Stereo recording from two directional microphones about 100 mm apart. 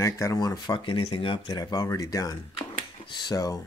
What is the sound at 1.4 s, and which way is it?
Speech, 40° left (ahead or behind).